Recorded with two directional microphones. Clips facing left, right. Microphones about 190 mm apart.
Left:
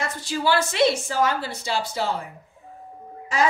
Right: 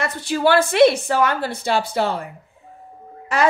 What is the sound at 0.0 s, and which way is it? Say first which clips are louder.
A woman's voice: right 6 dB; 60° right (ahead or behind).